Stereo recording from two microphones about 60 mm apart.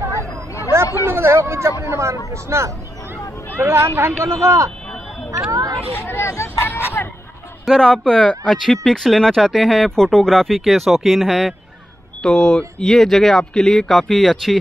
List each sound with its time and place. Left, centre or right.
1.0 s speech: right
5.5 s a sound: right
5.9 s speech: left
7.6 s speech: centre